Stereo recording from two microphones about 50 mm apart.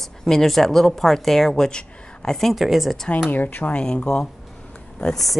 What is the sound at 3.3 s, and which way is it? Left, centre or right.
Speech, left.